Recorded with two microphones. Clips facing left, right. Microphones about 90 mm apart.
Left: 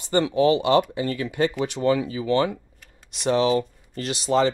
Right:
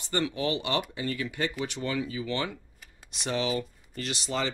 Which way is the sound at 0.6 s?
45° left (ahead or behind).